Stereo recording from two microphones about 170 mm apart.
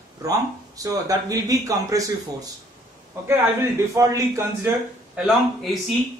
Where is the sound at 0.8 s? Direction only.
20° right (ahead or behind).